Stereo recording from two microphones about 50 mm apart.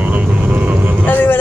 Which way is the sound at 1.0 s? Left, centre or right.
Left.